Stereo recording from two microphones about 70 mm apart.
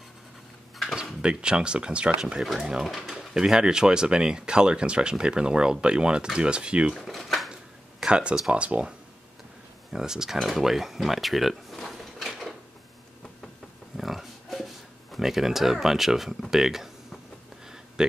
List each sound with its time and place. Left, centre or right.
1.2 s speech: centre
7.0 s typewriter: centre
8.0 s speech: centre
9.9 s speech: centre
13.9 s a sound: centre